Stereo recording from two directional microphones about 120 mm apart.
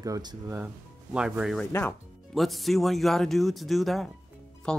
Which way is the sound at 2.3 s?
Centre (ahead or behind).